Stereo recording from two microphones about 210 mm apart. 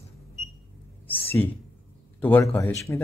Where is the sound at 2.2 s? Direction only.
10° left (ahead or behind).